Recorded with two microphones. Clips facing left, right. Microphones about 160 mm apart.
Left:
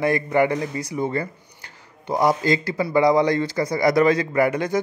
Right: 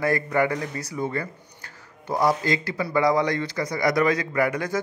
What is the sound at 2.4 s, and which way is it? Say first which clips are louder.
A man's voice: left 4 dB; 30° left (ahead or behind).